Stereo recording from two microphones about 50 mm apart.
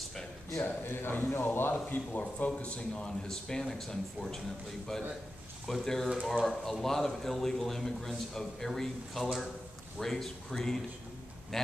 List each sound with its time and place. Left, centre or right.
0.1 s a sound: centre
0.8 s speech: left; by 4.4 s centre
5.7 s a man's voice: centre